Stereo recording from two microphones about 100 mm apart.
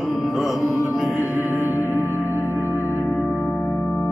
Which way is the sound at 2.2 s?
25° left (ahead or behind).